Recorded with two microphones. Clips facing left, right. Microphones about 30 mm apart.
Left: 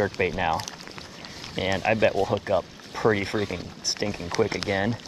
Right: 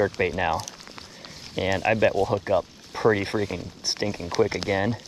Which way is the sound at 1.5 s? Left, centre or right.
Centre.